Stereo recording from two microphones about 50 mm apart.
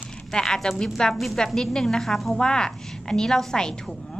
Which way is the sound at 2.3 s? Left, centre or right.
Centre.